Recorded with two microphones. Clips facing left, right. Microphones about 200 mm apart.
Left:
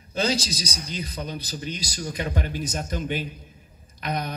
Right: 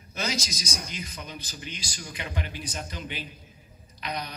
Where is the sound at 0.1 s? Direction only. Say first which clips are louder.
Left 7 dB; 30° left (ahead or behind).